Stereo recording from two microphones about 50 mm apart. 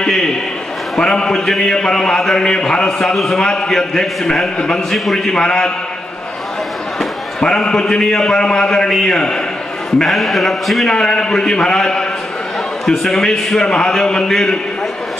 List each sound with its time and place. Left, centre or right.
0.0 s a man's voice: centre
7.0 s a man's voice: centre
9.9 s a man's voice: centre
10.9 s a man's voice: centre